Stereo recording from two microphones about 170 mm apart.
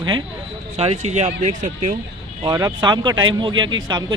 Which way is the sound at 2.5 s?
25° right (ahead or behind).